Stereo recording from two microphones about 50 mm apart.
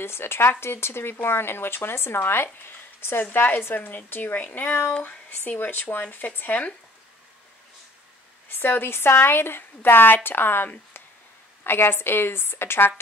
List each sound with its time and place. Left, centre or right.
0.0 s a woman's voice: left
8.5 s speech: left